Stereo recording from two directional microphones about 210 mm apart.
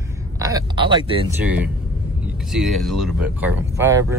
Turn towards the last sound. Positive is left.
turn(degrees=-10)  # may be behind; listen again after turning